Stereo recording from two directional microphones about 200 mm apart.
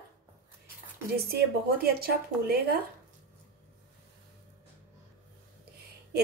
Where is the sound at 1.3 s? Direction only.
50° right (ahead or behind).